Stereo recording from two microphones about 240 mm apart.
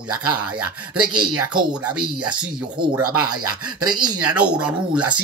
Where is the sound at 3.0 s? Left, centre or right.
Right.